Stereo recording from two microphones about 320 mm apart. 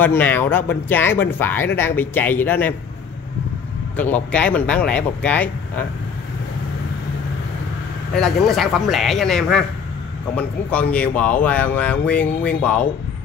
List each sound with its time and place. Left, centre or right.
0.0 s speech: centre
3.9 s speech: centre
8.1 s speech: centre